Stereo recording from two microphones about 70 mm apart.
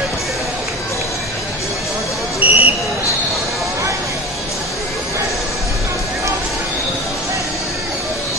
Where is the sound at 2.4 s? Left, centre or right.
Right.